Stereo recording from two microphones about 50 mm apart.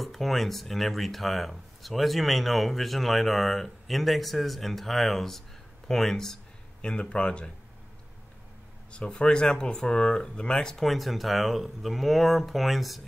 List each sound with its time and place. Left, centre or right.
0.0 s speech: centre
6.8 s speech: left
8.9 s speech: left
10.9 s speech: centre